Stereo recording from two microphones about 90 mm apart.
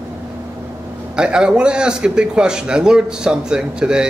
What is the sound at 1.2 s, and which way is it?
A man's voice, 10° right (ahead or behind).